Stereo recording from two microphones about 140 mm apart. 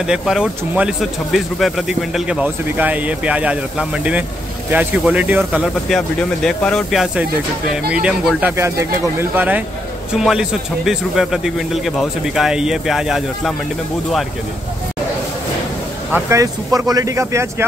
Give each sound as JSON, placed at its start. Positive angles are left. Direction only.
{"t": 0.0, "sound": "speech", "side_deg": -5}
{"t": 16.1, "sound": "speech", "side_deg": -20}